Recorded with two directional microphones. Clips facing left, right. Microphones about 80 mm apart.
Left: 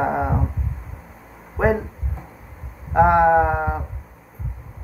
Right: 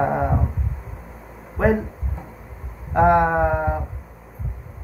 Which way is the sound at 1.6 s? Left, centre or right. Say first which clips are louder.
Even; centre.